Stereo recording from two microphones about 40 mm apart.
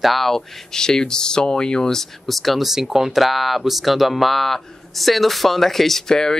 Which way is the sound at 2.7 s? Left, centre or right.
Centre.